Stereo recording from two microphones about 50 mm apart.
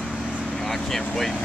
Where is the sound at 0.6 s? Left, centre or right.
Centre.